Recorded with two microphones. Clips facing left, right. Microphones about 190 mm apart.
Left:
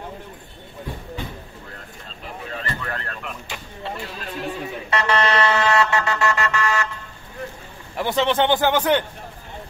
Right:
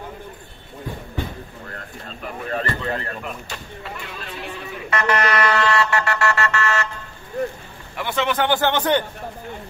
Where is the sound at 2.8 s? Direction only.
15° right (ahead or behind).